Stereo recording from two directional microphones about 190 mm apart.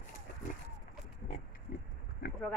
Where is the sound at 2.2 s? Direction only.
55° left (ahead or behind).